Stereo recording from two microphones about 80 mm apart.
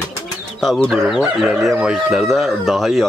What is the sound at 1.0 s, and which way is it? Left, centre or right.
Speech, centre.